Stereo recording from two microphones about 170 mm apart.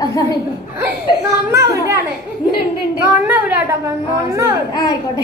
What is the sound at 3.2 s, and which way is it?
Speech, 10° right (ahead or behind).